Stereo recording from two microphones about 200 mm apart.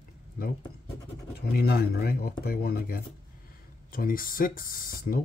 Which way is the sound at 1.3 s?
50° left (ahead or behind).